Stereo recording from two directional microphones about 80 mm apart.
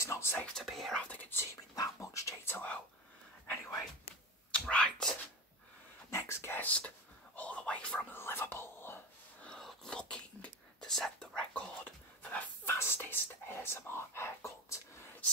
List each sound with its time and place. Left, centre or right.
0.0 s speech: left
0.5 s speech: centre
1.0 s speech: left
1.8 s speech: left
2.5 s speech: centre
4.5 s speech: centre
6.0 s speech: left; by 8.2 s centre
8.2 s speech: left
9.6 s whispering: centre
11.8 s dog: centre
12.7 s speech: left